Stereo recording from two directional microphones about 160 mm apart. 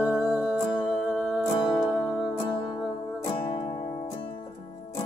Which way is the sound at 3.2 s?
35° left (ahead or behind).